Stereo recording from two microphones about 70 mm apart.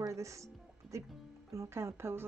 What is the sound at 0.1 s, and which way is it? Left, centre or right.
Speech, right.